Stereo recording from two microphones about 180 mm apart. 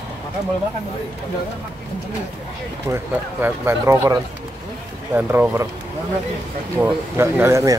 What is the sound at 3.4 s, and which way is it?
Speech, 15° right (ahead or behind).